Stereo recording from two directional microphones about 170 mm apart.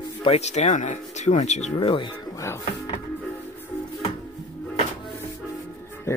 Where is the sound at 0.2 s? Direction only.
35° left (ahead or behind).